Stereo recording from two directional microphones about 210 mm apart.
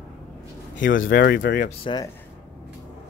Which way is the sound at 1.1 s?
45° left (ahead or behind).